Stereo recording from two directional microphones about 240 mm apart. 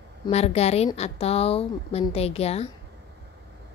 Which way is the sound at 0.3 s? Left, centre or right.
Left.